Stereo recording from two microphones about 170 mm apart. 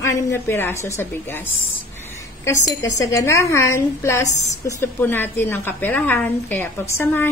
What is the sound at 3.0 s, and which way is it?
A woman's voice, 20° left (ahead or behind).